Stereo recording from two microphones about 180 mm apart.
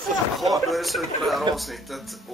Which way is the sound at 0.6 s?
Centre (ahead or behind).